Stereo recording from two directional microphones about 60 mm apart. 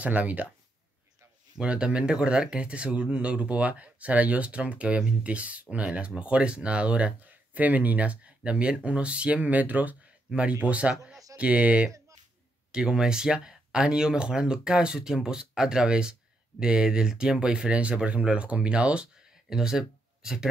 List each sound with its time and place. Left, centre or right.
0.0 s speech: right
1.6 s speech: centre
19.5 s speech: centre